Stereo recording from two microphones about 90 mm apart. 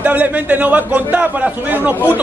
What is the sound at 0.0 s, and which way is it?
A man's voice, 15° right (ahead or behind).